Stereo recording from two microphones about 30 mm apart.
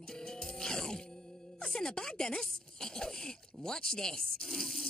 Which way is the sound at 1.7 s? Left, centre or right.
Left.